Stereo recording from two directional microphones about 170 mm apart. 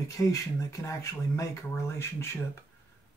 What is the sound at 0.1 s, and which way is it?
Speech, 20° left (ahead or behind).